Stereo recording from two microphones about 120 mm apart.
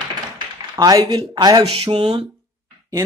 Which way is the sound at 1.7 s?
50° right (ahead or behind).